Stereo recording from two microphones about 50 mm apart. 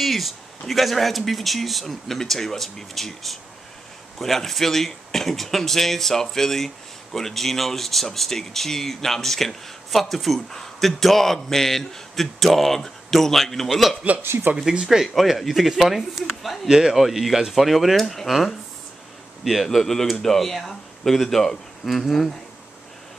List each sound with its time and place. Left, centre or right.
0.0 s speech: centre
14.2 s speech: right
14.6 s speech: centre
15.1 s speech: centre
16.6 s speech: centre